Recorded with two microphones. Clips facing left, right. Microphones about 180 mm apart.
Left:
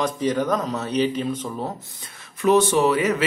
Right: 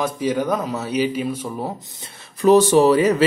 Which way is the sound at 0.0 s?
10° right (ahead or behind).